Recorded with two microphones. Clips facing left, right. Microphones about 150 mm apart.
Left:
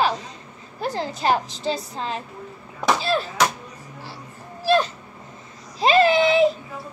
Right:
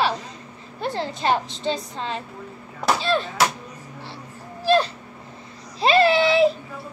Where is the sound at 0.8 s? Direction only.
40° left (ahead or behind).